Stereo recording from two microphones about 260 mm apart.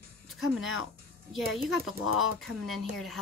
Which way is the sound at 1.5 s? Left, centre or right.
Centre.